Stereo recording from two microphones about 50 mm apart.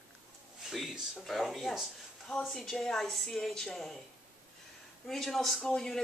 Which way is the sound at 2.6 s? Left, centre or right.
Centre.